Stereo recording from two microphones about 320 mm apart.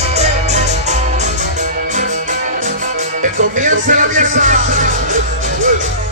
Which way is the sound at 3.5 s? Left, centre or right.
Right.